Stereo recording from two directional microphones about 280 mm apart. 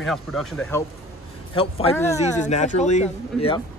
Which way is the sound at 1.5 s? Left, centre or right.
Left.